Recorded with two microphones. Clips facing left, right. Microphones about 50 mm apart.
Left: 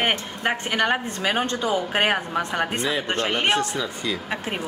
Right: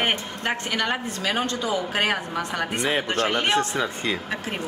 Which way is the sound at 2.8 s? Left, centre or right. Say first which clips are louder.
Right 1 dB; right.